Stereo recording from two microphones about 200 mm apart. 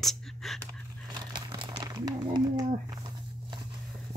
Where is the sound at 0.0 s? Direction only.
Centre (ahead or behind).